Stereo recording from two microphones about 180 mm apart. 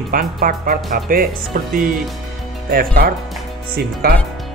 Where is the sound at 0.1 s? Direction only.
50° right (ahead or behind).